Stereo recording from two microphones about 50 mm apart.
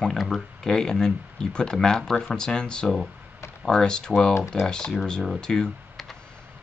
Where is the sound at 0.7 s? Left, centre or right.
Centre.